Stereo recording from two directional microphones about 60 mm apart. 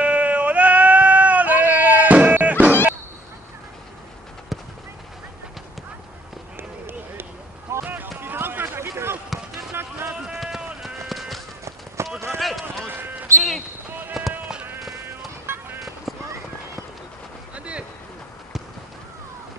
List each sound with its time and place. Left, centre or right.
0.0 s bleat: right
6.5 s a sound: right
10.3 s run: centre
10.8 s clip-clop: centre
12.0 s run: right
12.4 s run: centre
12.8 s a sound: right
14.2 s a sound: centre
15.0 s music: right
16.1 s run: centre
17.6 s boat: centre